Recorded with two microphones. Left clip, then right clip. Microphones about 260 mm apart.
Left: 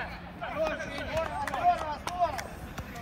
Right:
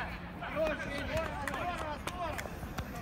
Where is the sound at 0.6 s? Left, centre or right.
Centre.